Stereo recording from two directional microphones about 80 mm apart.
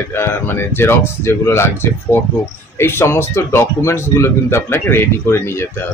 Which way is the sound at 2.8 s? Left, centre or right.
Left.